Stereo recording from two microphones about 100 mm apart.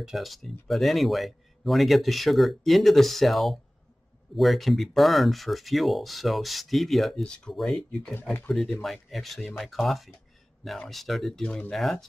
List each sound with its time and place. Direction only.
0.0 s speech: centre (ahead or behind)
8.1 s speech: 20° left (ahead or behind)
8.8 s speech: centre (ahead or behind)
11.4 s speech: 15° left (ahead or behind)
11.7 s speech: centre (ahead or behind)